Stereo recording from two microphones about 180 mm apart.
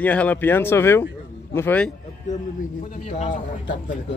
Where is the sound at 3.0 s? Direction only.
35° left (ahead or behind).